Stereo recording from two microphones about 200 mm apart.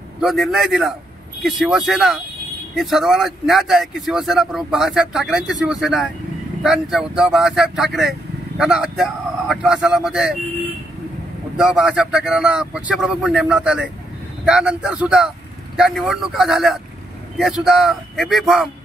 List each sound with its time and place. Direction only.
0.2 s speech: centre (ahead or behind)
11.5 s speech: 5° right (ahead or behind)